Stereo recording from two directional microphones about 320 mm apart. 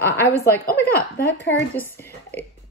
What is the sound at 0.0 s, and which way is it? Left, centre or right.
Speech, centre.